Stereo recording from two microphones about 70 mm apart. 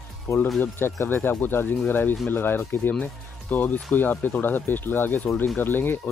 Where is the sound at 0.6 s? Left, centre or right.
Left.